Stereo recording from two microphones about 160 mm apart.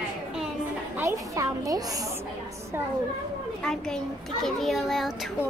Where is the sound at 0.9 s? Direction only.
20° right (ahead or behind).